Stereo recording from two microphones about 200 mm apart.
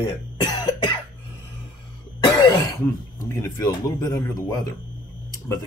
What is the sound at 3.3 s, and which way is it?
Speech, 15° left (ahead or behind).